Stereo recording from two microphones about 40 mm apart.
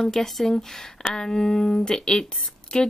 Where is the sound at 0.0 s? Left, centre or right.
Centre.